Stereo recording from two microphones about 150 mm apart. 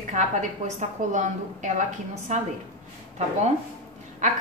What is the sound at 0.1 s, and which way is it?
A woman's voice, 55° right (ahead or behind).